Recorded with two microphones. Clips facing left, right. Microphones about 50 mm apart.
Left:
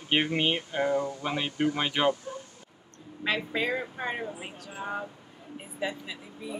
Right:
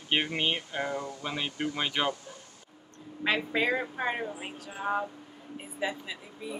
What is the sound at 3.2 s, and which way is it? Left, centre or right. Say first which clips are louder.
Speech: right 1 dB; centre.